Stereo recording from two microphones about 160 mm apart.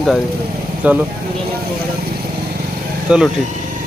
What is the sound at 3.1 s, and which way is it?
Speech, 5° right (ahead or behind).